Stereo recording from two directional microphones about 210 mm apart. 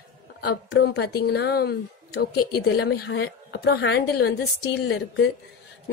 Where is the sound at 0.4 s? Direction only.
50° left (ahead or behind).